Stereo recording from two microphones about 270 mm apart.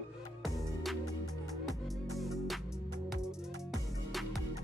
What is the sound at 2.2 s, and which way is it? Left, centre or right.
Music, centre.